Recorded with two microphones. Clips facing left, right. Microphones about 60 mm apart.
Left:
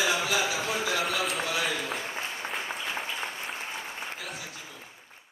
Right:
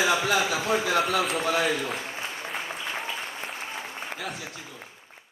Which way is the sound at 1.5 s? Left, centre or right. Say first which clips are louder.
Right 5 dB; right.